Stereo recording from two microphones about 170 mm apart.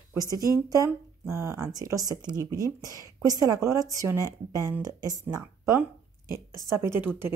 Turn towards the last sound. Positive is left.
turn(degrees=-10)  # may be behind; listen again after turning